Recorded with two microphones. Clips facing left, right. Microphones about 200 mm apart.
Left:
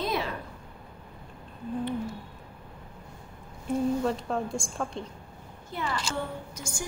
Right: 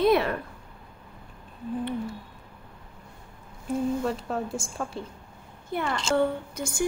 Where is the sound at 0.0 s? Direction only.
60° right (ahead or behind).